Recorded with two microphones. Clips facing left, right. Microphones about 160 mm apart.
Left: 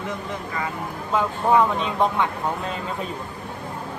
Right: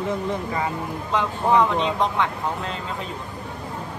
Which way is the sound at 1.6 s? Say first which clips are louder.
Even; 10° left (ahead or behind).